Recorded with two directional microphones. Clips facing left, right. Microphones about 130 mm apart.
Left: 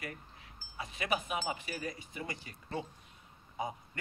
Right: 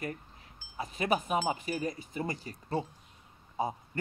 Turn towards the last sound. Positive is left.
turn(degrees=-30)  # may be behind; listen again after turning